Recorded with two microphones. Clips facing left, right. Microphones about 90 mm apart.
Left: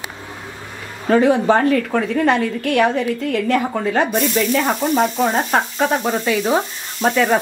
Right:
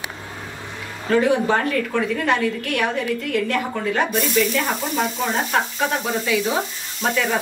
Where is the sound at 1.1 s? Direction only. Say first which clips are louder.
Left 4 dB; 35° left (ahead or behind).